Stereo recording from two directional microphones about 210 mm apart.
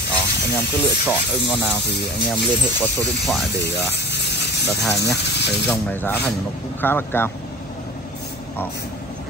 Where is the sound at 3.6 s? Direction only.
55° left (ahead or behind).